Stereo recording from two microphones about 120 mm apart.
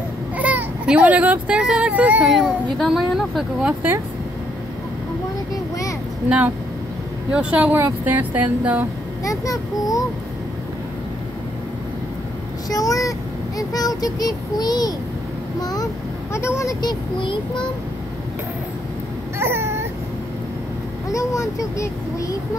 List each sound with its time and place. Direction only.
0.4 s speech: 10° right (ahead or behind)
6.2 s speech: 10° right (ahead or behind)
9.2 s a child's voice: 25° left (ahead or behind)
12.6 s vehicle: 30° left (ahead or behind)
13.6 s a child's voice: 30° left (ahead or behind)
16.8 s a child's voice: 45° left (ahead or behind)
19.3 s a sound: 20° right (ahead or behind)
21.1 s a child's voice: 25° left (ahead or behind)